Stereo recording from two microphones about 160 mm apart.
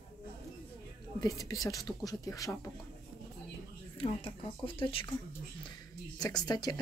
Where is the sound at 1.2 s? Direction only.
20° left (ahead or behind).